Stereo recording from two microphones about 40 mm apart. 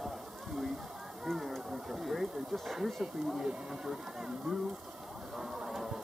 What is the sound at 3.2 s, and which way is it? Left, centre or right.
Speech, centre.